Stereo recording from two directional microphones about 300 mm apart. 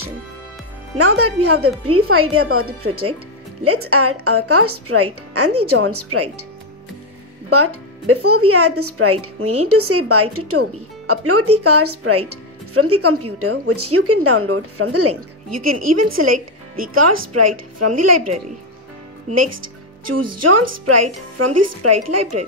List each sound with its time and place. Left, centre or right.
1.2 s speech: right
7.4 s speech: right
16.3 s speech: right
16.9 s speech: right